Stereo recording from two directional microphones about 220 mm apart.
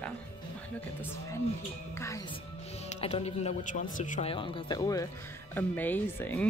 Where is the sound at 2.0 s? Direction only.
15° left (ahead or behind).